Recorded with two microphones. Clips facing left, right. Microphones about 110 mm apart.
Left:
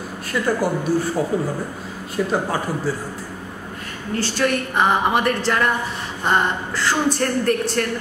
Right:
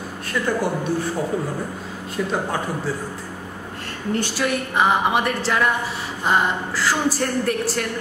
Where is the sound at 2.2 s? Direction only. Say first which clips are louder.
Left 3 dB; 5° left (ahead or behind).